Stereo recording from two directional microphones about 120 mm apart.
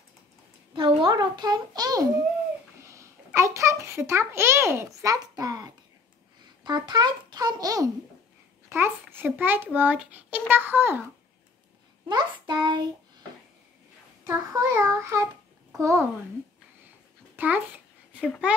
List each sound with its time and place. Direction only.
0.7 s a sound: 40° right (ahead or behind); by 3.1 s 25° right (ahead or behind)
3.3 s a child's voice: 25° right (ahead or behind)
8.6 s a child's voice: 20° right (ahead or behind)
12.1 s a child's voice: 40° right (ahead or behind)
14.2 s child singing: 25° right (ahead or behind)
15.7 s a child's voice: 25° right (ahead or behind)
17.4 s a child's voice: 15° right (ahead or behind)